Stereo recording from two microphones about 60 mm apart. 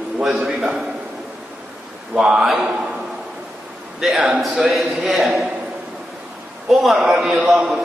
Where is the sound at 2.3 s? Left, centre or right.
Centre.